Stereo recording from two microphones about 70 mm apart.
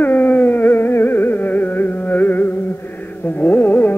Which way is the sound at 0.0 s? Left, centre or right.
Left.